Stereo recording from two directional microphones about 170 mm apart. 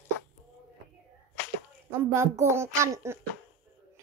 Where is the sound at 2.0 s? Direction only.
15° right (ahead or behind).